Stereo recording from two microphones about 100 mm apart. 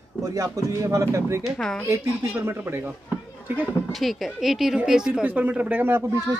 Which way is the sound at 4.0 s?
Centre (ahead or behind).